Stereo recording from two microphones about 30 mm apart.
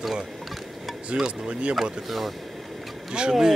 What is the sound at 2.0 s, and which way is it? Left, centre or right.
Speech, centre.